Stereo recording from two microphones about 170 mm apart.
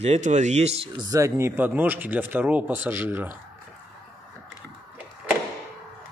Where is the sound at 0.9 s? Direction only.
20° right (ahead or behind).